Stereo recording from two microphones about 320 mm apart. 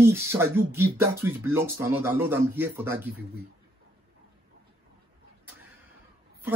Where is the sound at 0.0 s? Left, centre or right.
Centre.